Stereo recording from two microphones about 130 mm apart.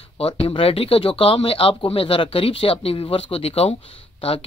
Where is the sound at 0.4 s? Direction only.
45° left (ahead or behind).